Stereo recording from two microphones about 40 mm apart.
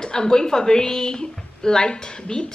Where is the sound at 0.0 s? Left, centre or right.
Centre.